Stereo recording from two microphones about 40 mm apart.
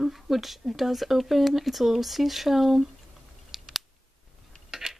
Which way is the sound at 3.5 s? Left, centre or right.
Centre.